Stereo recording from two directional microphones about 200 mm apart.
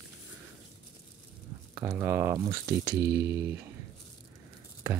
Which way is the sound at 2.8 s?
50° right (ahead or behind).